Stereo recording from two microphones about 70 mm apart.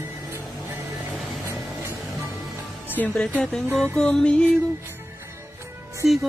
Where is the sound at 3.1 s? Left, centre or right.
Centre.